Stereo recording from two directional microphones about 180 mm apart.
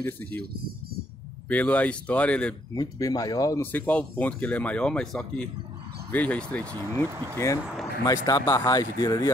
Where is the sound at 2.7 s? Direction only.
20° left (ahead or behind).